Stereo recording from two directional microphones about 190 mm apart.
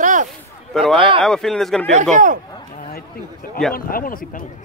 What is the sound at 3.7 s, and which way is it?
Speech, 50° left (ahead or behind).